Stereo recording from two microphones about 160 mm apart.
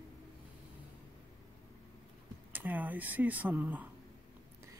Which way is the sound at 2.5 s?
10° right (ahead or behind).